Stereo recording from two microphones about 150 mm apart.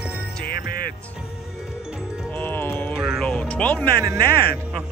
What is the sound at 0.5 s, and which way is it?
Music, 90° left.